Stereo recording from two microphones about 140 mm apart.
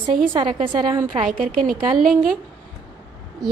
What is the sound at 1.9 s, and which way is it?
Speech, centre (ahead or behind).